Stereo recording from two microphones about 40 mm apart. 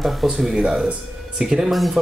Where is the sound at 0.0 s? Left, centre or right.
Centre.